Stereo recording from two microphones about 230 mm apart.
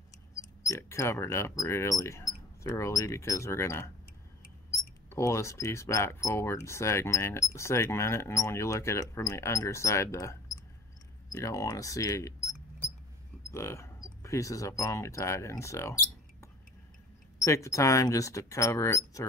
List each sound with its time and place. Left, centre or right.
0.7 s speech: centre
5.1 s speech: centre
13.5 s speech: centre
17.4 s speech: centre